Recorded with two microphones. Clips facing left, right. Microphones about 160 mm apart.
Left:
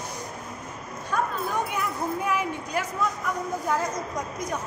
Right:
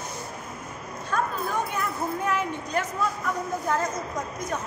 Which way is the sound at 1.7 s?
10° left (ahead or behind).